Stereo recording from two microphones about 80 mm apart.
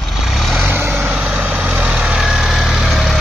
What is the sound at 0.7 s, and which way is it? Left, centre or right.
Vehicle, right.